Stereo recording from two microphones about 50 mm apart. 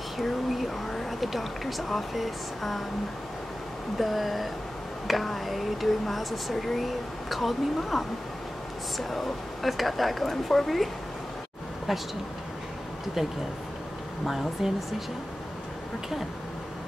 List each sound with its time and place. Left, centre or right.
0.2 s speech: centre
4.0 s speech: centre
14.6 s speech: centre